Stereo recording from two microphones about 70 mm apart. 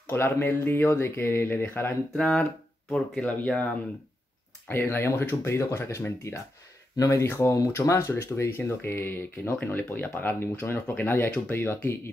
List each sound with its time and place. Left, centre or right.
0.0 s speech: left
2.1 s speech: centre
4.6 s speech: left
7.2 s speech: left
8.5 s speech: left
11.2 s speech: centre
11.5 s speech: left